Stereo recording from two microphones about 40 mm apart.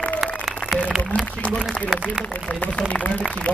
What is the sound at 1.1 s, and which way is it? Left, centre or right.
Speech, left.